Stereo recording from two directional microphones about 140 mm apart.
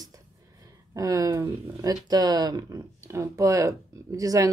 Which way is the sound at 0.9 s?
25° right (ahead or behind).